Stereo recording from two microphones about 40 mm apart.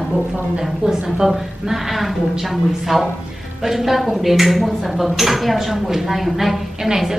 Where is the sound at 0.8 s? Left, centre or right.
Centre.